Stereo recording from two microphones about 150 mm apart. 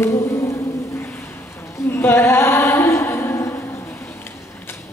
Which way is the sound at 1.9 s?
15° left (ahead or behind).